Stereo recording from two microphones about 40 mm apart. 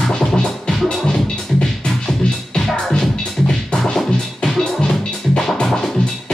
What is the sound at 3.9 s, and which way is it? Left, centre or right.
Music, centre.